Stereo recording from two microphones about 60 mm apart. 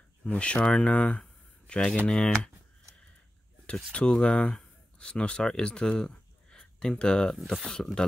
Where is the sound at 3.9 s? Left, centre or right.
Centre.